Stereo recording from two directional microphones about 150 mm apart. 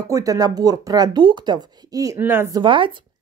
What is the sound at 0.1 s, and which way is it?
A woman's voice, 25° right (ahead or behind).